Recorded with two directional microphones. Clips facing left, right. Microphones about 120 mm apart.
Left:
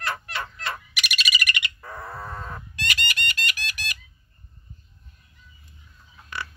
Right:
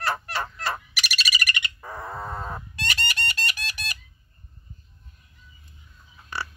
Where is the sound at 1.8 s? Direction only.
15° right (ahead or behind); by 4.0 s 30° right (ahead or behind).